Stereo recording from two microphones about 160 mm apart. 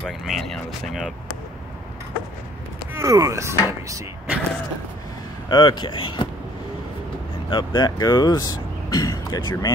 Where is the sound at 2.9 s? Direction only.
20° right (ahead or behind).